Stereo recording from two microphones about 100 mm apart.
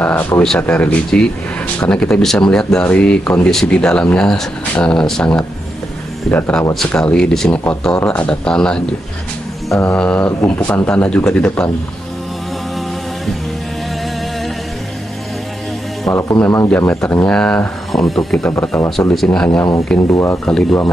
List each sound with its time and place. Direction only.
0.0 s speech: 20° left (ahead or behind)
9.7 s mantra: 30° left (ahead or behind)
9.9 s speech: 15° left (ahead or behind)
16.1 s speech: 30° left (ahead or behind)
17.3 s speech: 10° left (ahead or behind)
20.1 s speech: 25° left (ahead or behind)
20.4 s speech: 10° left (ahead or behind)